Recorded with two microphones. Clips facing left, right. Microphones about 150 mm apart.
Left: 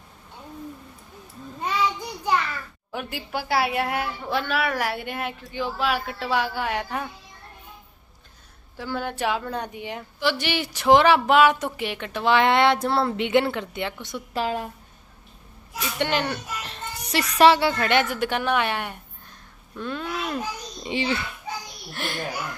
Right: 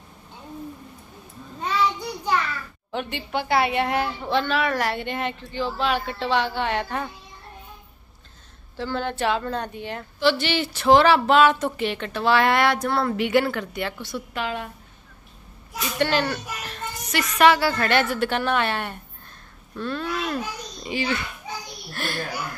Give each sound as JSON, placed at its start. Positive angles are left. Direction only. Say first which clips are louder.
{"t": 1.6, "sound": "child singing", "louder": "right 1 dB", "side_deg": 10}
{"t": 2.9, "sound": "a woman's voice", "louder": "right 3 dB", "side_deg": 5}
{"t": 8.7, "sound": "a woman's voice", "louder": "right 2 dB", "side_deg": 10}
{"t": 14.3, "sound": "a woman's voice", "louder": "left 4 dB", "side_deg": 35}
{"t": 16.0, "sound": "a woman's voice", "louder": "right 2 dB", "side_deg": 20}
{"t": 20.8, "sound": "a child's voice", "louder": "left 1 dB", "side_deg": 25}